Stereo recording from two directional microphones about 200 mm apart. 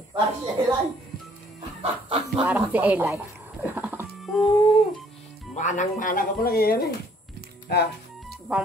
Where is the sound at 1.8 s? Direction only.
30° right (ahead or behind).